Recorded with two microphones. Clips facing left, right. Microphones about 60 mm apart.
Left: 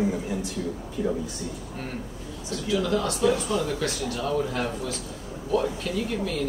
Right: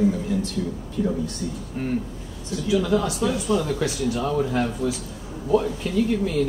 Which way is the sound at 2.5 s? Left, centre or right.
Centre.